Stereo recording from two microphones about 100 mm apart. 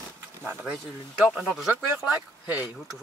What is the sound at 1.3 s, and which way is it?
Speech, centre (ahead or behind).